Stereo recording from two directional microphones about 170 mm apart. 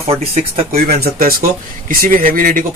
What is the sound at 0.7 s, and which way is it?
Speech, 60° right (ahead or behind).